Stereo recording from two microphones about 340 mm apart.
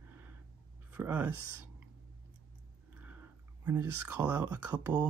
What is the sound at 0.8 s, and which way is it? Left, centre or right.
Speech, centre.